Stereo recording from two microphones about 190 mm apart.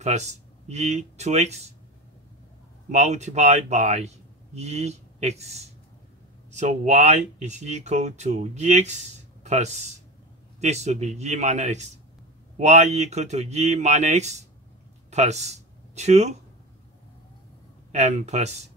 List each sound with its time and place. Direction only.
0.0 s speech: 35° right (ahead or behind)
2.9 s speech: 35° right (ahead or behind)
17.9 s speech: 35° right (ahead or behind)